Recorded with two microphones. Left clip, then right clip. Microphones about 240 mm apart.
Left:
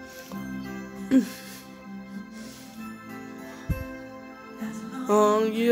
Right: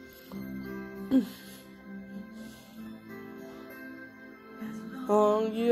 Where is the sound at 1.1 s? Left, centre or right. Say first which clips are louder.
Left 5 dB; centre.